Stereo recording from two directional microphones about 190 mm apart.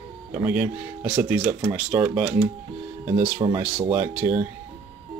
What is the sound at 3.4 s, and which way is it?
Speech, 25° right (ahead or behind).